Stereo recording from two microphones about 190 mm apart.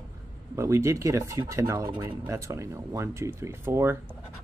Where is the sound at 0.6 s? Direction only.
15° right (ahead or behind).